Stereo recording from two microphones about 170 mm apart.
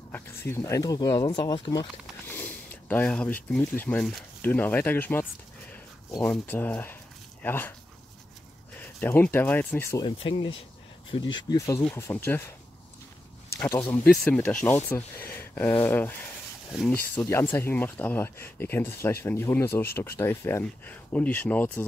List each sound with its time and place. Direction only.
0.1 s speech: 15° left (ahead or behind)
2.2 s a sound: 10° left (ahead or behind)
3.5 s speech: 10° left (ahead or behind)
6.2 s speech: 10° left (ahead or behind)
8.7 s speech: 10° left (ahead or behind)
10.0 s speech: 30° left (ahead or behind)
11.3 s speech: 20° left (ahead or behind)
13.6 s speech: 10° left (ahead or behind)